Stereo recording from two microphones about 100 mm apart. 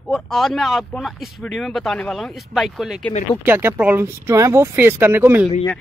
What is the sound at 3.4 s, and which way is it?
Speech, 25° right (ahead or behind).